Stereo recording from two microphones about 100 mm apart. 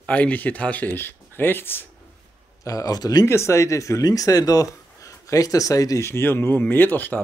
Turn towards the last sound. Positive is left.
turn(degrees=20)  # may be behind; listen again after turning